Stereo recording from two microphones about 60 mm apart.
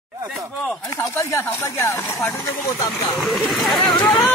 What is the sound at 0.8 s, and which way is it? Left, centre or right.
Speech, left.